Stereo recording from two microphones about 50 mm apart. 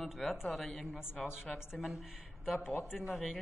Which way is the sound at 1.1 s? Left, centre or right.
Left.